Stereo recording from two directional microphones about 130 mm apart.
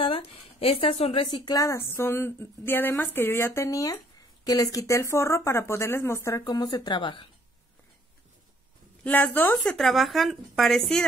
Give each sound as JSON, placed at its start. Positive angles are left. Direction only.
{"t": 0.0, "sound": "speech", "side_deg": 45}
{"t": 1.3, "sound": "speech", "side_deg": 30}
{"t": 9.0, "sound": "a woman's voice", "side_deg": 10}
{"t": 9.6, "sound": "speech", "side_deg": 0}